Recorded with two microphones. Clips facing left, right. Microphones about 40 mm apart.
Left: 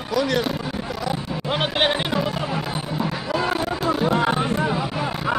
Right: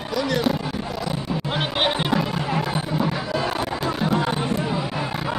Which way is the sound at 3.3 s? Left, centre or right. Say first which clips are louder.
Left 2 dB; left.